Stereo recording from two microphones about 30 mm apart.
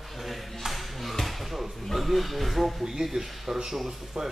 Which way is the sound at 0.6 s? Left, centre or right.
Centre.